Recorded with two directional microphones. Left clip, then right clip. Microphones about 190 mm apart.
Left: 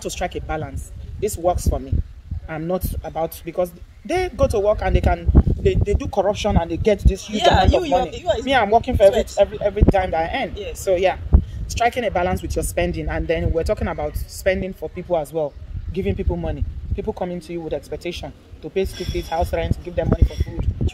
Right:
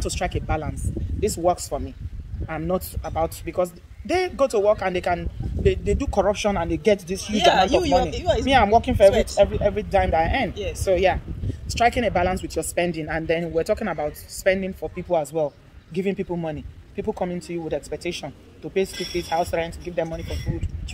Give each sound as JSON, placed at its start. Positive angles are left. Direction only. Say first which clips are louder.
{"t": 0.0, "sound": "speech", "louder": "left 1 dB", "side_deg": 10}
{"t": 7.5, "sound": "speech", "louder": "left 1 dB", "side_deg": -15}
{"t": 8.5, "sound": "speech", "louder": "left 1 dB", "side_deg": 10}